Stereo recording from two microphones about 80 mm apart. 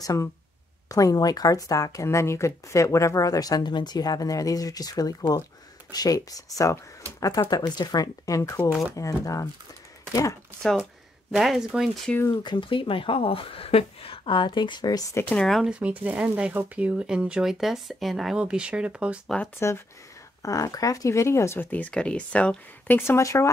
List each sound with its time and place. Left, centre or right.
0.0 s speech: left
8.6 s speech: centre
8.9 s speech: left
11.3 s speech: centre
12.3 s speech: left
15.6 s speech: centre
18.4 s speech: centre
19.2 s speech: centre
20.4 s speech: left